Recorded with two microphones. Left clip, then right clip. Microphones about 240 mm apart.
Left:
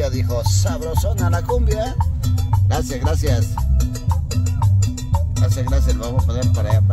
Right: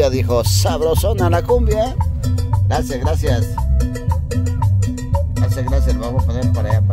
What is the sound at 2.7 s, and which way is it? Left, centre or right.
Speech, centre.